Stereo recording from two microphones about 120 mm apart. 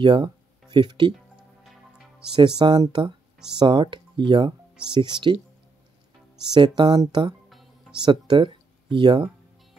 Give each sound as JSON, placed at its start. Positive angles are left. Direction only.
{"t": 0.0, "sound": "speech", "side_deg": -40}
{"t": 2.3, "sound": "speech", "side_deg": -40}
{"t": 6.5, "sound": "speech", "side_deg": -40}
{"t": 7.4, "sound": "music", "side_deg": 0}
{"t": 8.0, "sound": "speech", "side_deg": -40}